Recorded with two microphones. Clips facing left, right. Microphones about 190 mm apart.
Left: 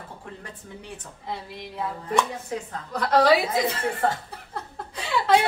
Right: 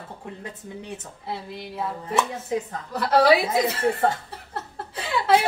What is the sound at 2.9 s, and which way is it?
Speech, 5° right (ahead or behind).